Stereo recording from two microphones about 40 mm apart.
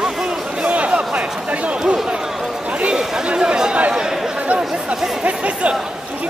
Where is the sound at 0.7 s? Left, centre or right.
Right.